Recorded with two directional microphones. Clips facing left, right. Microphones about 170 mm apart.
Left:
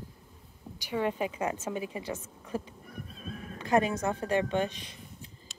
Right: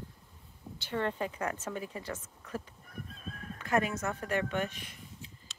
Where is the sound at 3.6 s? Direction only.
25° left (ahead or behind).